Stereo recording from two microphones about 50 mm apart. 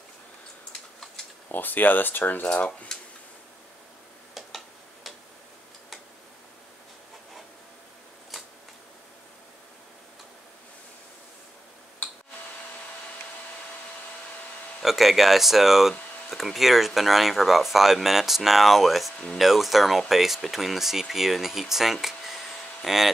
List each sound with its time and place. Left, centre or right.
1.5 s speech: left
2.5 s dishes: left
4.3 s tick-tock: centre
14.8 s speech: centre